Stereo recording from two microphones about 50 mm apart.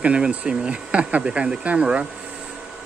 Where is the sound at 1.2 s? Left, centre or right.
Centre.